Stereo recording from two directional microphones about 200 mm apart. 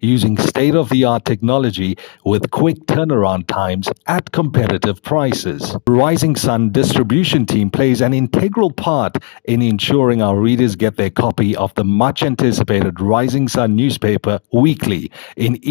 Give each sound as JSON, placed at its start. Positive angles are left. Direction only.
{"t": 0.1, "sound": "speech", "side_deg": 40}
{"t": 5.9, "sound": "speech", "side_deg": 40}